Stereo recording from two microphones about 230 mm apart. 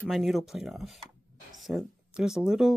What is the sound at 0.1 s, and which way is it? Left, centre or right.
Speech, centre.